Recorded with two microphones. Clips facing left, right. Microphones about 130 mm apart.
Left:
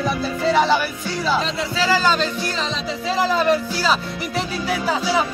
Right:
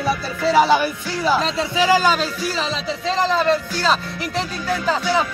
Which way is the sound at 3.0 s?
5° left (ahead or behind).